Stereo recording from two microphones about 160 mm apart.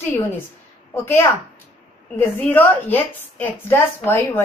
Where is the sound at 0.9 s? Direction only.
15° left (ahead or behind).